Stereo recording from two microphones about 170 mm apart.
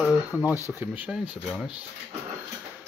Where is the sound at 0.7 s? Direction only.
10° right (ahead or behind).